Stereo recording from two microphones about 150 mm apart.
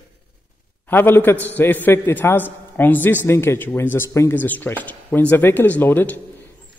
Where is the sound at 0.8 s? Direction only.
15° left (ahead or behind).